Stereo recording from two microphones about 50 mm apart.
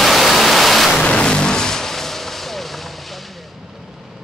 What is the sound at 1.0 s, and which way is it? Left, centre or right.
Vehicle, centre.